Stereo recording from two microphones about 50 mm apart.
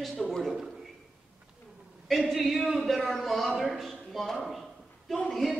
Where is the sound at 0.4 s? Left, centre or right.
Centre.